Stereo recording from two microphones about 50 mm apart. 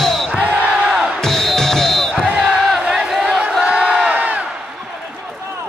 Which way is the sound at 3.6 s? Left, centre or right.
Right.